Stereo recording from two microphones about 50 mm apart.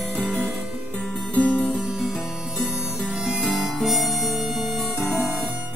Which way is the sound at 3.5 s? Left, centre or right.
Centre.